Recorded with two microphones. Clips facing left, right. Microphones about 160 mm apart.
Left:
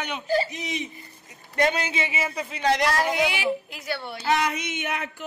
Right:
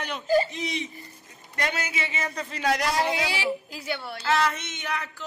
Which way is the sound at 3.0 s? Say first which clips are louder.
Left 2 dB; 30° right (ahead or behind).